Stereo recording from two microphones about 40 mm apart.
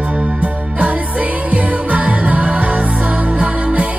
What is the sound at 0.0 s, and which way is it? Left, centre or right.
Music, right.